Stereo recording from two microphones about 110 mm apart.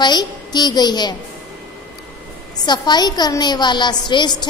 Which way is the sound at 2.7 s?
40° left (ahead or behind).